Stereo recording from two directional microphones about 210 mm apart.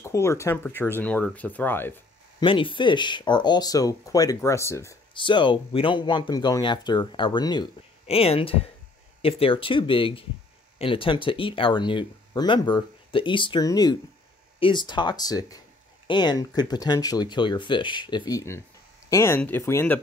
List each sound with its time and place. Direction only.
0.0 s speech: 15° left (ahead or behind)
2.4 s speech: 25° left (ahead or behind)